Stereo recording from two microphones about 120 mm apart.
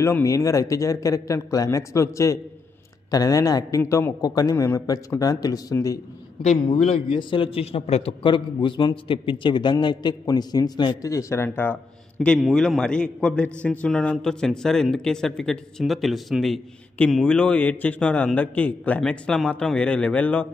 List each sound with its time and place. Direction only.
0.0 s speech: 25° left (ahead or behind)
6.8 s a man's voice: 50° left (ahead or behind); by 11.1 s 35° left (ahead or behind)
11.1 s a man's voice: 25° left (ahead or behind)
12.4 s a man's voice: 5° left (ahead or behind)